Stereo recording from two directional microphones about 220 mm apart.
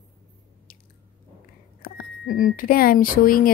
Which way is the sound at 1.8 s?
40° left (ahead or behind).